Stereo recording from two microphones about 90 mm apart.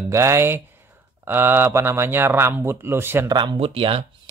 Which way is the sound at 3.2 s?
60° right (ahead or behind).